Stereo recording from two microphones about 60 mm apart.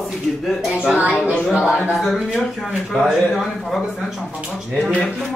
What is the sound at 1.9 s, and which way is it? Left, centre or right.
Speech, centre.